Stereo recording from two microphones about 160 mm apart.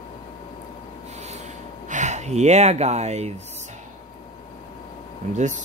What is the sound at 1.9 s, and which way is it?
Speech, 50° right (ahead or behind).